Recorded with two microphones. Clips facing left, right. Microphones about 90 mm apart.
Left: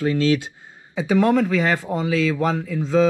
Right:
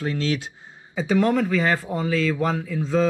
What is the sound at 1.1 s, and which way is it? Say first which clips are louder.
Speech: left 3 dB; 10° left (ahead or behind).